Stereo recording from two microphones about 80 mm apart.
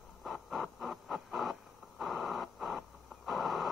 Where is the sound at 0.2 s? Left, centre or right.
Centre.